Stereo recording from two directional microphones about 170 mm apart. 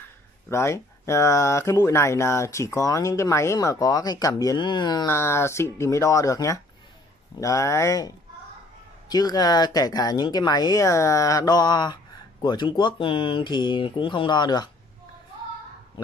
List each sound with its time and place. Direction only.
0.5 s speech: 15° left (ahead or behind)
5.1 s speech: 15° left (ahead or behind)
9.1 s speech: 25° left (ahead or behind)